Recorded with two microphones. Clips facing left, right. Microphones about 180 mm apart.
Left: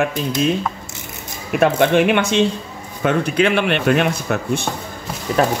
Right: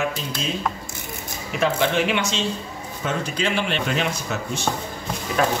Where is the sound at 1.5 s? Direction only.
55° left (ahead or behind).